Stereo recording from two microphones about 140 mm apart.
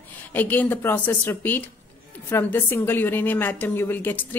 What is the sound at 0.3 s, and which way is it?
Speech, 15° left (ahead or behind).